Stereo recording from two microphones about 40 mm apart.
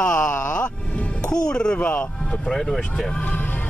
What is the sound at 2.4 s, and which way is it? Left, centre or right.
Speech, centre.